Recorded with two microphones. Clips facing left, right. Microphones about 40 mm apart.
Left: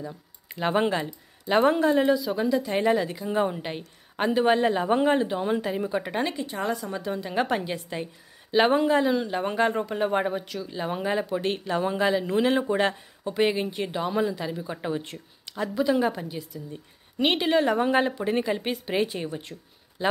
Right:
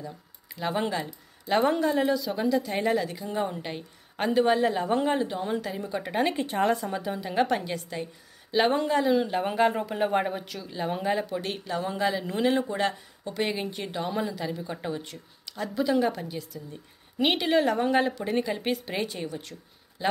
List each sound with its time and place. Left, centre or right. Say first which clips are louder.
0.0 s a sound: left 3 dB; centre
0.7 s speech: left 4 dB; left
1.5 s a woman's voice: left 3 dB; centre
6.3 s speech: right 4 dB; right
6.9 s speech: left 1 dB; centre
7.4 s a woman's voice: left 1 dB; centre
12.6 s speech: left 4 dB; left
13.2 s a woman's voice: left 5 dB; centre
15.6 s a woman's voice: left 1 dB; centre
19.2 s speech: left 2 dB; left
20.0 s a man's voice: left 2 dB; centre